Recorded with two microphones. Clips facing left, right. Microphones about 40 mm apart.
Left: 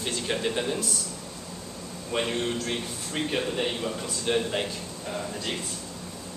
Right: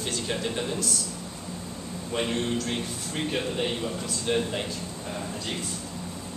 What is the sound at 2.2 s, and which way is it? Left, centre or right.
A man's voice, centre.